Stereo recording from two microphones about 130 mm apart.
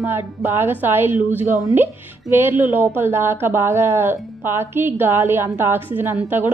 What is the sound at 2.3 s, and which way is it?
A woman's voice, 15° right (ahead or behind).